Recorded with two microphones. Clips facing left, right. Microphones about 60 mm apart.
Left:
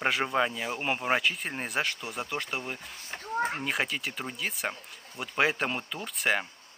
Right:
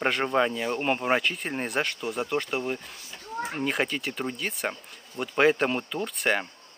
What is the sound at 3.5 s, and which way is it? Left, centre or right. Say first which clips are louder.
Speech: right 3 dB; centre.